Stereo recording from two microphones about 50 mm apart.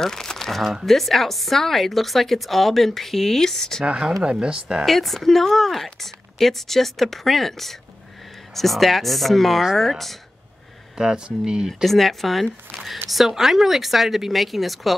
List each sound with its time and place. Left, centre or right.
0.0 s a woman's voice: centre
3.8 s speech: right
4.8 s a woman's voice: centre
11.0 s speech: centre
11.8 s a woman's voice: centre